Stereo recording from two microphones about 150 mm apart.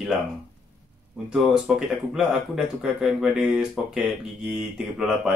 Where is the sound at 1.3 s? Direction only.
5° right (ahead or behind).